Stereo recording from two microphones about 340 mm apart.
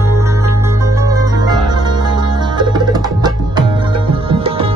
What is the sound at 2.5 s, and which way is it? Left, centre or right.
Tabla, centre.